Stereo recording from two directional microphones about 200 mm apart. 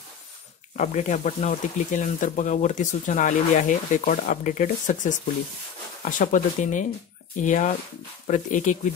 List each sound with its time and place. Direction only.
0.7 s speech: 35° left (ahead or behind)